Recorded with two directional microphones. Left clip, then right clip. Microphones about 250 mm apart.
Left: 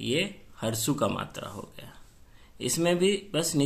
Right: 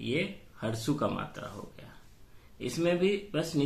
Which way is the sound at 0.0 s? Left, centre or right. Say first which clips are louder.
Left 4 dB; left.